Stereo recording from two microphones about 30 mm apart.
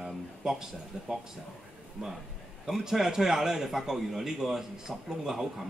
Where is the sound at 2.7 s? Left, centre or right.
Centre.